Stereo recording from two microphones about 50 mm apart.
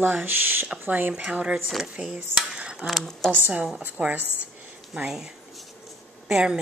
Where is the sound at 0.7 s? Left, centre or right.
Right.